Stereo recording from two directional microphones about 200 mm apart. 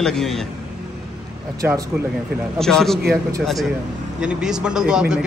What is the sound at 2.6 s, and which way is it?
Speech, centre (ahead or behind).